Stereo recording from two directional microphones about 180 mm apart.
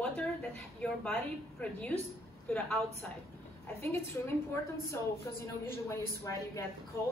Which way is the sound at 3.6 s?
10° left (ahead or behind).